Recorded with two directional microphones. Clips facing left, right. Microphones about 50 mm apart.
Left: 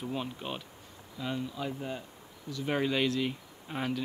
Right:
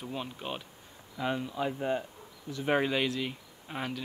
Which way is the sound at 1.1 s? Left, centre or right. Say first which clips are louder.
Right 3 dB; right.